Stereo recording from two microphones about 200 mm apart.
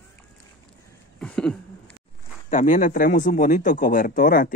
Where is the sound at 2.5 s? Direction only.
35° left (ahead or behind).